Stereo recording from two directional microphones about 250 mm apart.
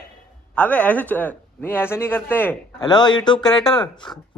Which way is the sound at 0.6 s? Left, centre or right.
Centre.